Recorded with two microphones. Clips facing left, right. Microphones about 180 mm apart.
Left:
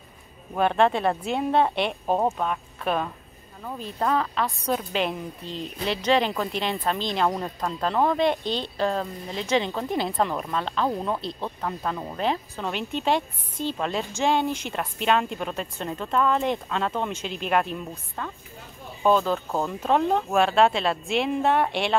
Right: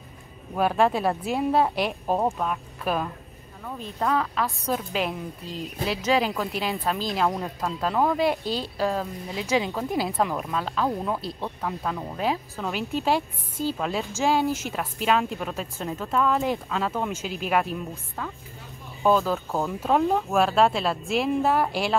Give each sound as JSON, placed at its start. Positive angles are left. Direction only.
{"t": 0.6, "sound": "a woman's voice", "side_deg": -5}